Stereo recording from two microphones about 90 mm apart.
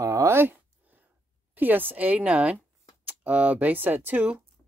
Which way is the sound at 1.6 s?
20° right (ahead or behind).